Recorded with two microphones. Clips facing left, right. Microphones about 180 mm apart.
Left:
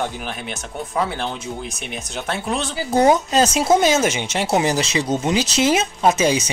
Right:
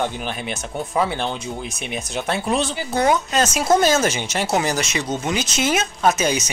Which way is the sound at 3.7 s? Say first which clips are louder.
Right 1 dB; 20° left (ahead or behind).